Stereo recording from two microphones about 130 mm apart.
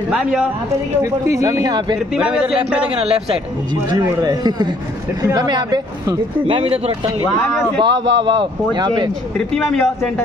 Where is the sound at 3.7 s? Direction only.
30° right (ahead or behind).